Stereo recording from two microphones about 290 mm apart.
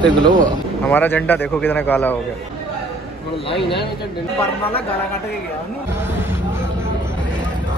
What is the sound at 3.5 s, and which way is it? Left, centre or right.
Speech, centre.